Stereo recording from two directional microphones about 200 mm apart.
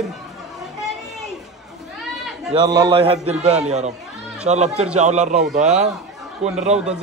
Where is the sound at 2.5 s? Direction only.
20° right (ahead or behind).